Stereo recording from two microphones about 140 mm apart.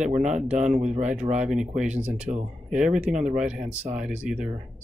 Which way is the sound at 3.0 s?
5° right (ahead or behind).